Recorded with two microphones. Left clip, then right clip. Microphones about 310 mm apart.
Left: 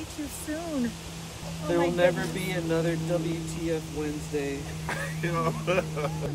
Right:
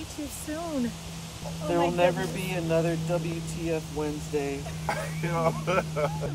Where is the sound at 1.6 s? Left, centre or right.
Right.